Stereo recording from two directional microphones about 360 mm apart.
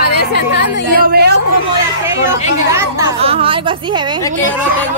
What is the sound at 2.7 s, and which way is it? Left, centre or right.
Speech, centre.